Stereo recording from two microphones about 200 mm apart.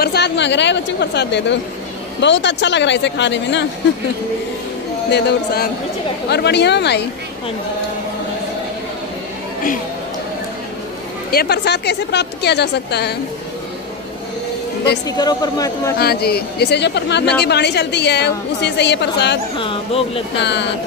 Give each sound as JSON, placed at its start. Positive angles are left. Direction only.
{"t": 0.0, "sound": "a woman's voice", "side_deg": 55}
{"t": 5.1, "sound": "a woman's voice", "side_deg": 50}
{"t": 11.3, "sound": "a woman's voice", "side_deg": 55}
{"t": 15.0, "sound": "speech", "side_deg": 20}
{"t": 16.0, "sound": "a woman's voice", "side_deg": 50}
{"t": 19.6, "sound": "speech", "side_deg": 25}
{"t": 20.4, "sound": "a woman's voice", "side_deg": 60}